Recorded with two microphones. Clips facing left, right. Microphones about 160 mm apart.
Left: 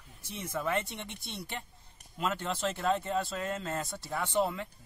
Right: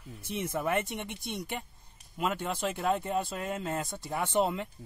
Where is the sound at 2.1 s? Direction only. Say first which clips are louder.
Right 1 dB; 10° right (ahead or behind).